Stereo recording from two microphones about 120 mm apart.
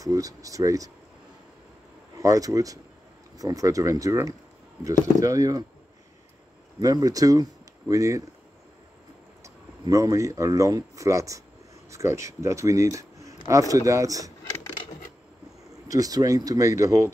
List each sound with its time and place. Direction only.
0.0 s speech: 30° right (ahead or behind)
2.1 s speech: 25° right (ahead or behind)
6.8 s speech: 30° right (ahead or behind)
9.4 s speech: 30° right (ahead or behind)
15.9 s speech: 30° right (ahead or behind)